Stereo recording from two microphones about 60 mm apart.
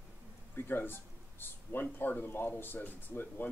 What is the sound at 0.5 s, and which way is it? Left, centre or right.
Speech, left.